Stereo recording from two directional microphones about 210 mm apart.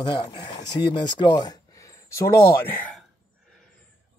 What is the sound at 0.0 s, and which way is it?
Speech, 20° left (ahead or behind).